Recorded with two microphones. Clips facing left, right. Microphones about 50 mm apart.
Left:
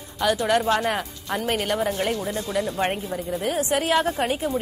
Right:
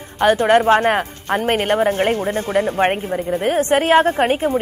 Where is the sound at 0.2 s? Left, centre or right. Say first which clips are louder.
Right 8 dB; right.